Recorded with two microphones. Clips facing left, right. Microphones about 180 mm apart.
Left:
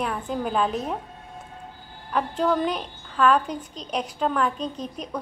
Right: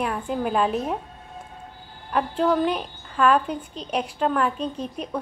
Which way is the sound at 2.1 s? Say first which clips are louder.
Right 2 dB; 5° right (ahead or behind).